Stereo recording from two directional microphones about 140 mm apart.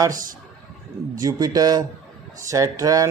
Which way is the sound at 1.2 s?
25° right (ahead or behind).